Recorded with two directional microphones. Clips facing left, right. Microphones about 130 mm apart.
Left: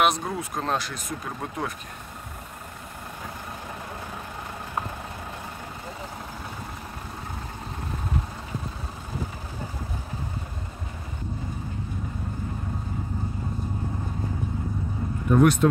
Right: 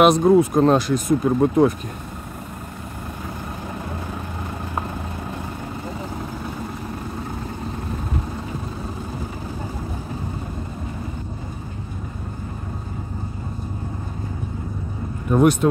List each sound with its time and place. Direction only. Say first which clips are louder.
0.0 s speech: right 11 dB; 25° right (ahead or behind)
1.4 s speech: right 15 dB; 30° right (ahead or behind)
15.3 s speech: right 3 dB; 15° right (ahead or behind)